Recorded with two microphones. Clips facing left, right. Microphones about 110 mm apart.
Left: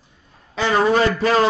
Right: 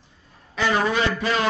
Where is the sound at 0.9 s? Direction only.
45° left (ahead or behind).